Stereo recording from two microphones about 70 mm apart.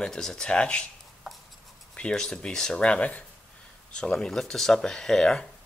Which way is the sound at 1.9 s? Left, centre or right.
Centre.